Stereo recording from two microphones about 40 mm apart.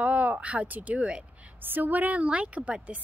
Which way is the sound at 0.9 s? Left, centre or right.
Right.